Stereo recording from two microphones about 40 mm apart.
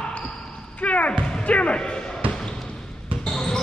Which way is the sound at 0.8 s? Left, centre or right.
Left.